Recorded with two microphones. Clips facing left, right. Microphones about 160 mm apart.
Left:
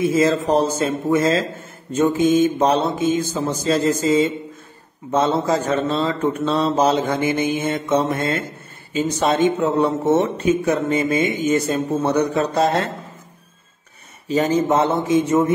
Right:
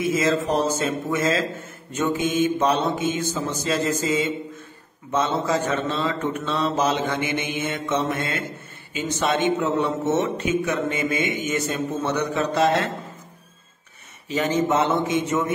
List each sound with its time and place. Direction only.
0.0 s speech: 35° left (ahead or behind)
14.2 s speech: 35° left (ahead or behind)